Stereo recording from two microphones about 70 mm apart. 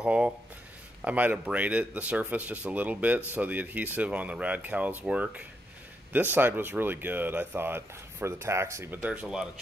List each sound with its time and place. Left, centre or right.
0.0 s speech: centre; by 8.9 s right
9.1 s speech: centre